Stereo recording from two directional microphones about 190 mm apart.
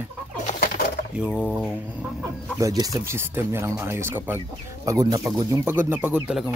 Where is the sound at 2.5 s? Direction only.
20° right (ahead or behind).